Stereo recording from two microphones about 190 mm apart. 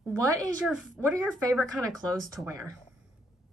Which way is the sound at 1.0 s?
5° right (ahead or behind).